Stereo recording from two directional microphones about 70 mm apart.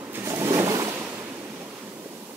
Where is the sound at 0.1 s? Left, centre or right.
Right.